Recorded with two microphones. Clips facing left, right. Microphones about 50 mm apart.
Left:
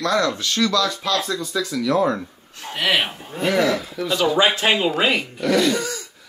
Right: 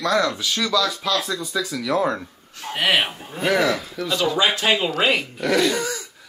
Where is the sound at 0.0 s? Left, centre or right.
Centre.